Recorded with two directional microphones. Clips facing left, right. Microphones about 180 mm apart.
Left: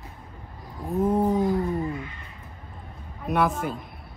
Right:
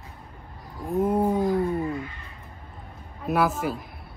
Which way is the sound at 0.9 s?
10° right (ahead or behind).